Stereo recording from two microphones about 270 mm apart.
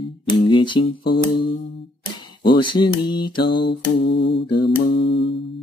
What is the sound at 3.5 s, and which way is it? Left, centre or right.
Mantra, left.